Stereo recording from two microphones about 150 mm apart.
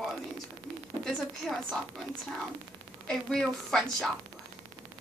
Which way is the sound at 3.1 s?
5° left (ahead or behind).